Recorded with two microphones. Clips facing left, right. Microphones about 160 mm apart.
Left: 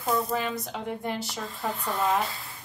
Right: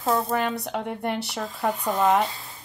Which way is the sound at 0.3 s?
65° right (ahead or behind).